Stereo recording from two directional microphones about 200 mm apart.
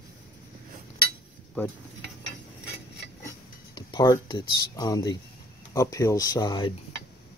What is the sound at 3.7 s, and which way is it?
Speech, 20° left (ahead or behind).